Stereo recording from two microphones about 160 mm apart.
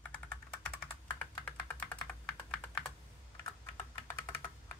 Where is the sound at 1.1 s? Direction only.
10° left (ahead or behind).